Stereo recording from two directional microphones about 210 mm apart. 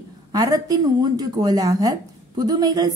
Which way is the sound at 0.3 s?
15° right (ahead or behind).